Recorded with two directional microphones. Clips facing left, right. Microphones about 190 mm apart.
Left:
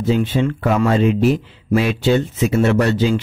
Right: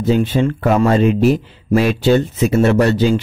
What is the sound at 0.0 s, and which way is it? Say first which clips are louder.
Speech: right 2 dB; 40° right (ahead or behind).